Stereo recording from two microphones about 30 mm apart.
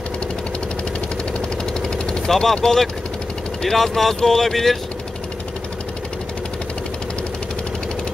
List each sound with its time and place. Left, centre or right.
2.2 s speech: centre
3.6 s speech: centre